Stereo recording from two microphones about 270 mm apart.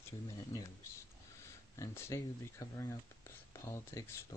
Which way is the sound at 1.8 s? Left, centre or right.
Centre.